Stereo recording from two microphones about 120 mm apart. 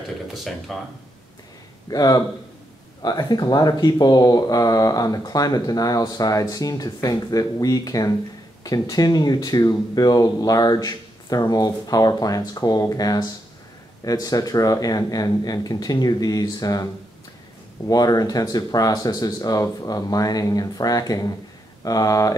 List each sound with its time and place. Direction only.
0.3 s speech: centre (ahead or behind)
1.9 s speech: 30° left (ahead or behind)
17.8 s speech: 30° left (ahead or behind)